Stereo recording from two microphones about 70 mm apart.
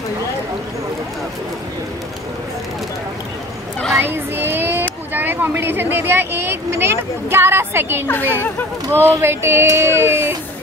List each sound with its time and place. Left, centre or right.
4.0 s child singing: right
5.1 s speech: right